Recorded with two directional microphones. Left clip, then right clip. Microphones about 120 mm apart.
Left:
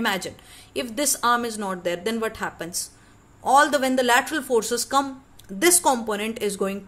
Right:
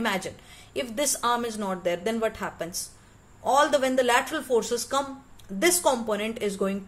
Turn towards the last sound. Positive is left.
turn(degrees=30)  # may be behind; listen again after turning